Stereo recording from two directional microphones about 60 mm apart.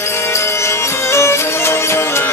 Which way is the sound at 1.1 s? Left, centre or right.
Left.